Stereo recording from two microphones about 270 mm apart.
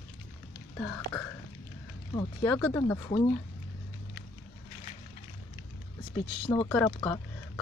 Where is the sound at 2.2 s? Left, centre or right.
Centre.